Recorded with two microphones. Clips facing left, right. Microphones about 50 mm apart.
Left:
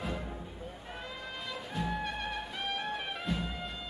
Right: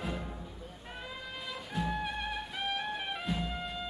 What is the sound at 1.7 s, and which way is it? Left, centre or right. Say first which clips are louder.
Music: right 1 dB; centre.